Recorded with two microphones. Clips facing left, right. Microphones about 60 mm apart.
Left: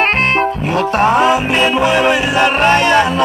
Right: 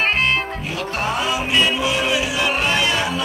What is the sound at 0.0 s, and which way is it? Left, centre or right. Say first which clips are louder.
Music: left 6 dB; left.